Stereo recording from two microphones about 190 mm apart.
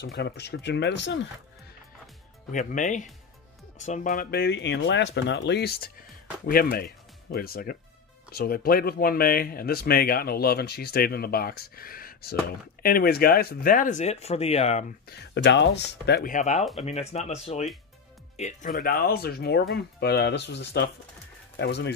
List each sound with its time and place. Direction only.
0.0 s speech: 65° left (ahead or behind)
2.5 s speech: 40° left (ahead or behind)
15.0 s speech: 65° left (ahead or behind)
16.3 s speech: 40° left (ahead or behind); by 21.9 s 60° left (ahead or behind)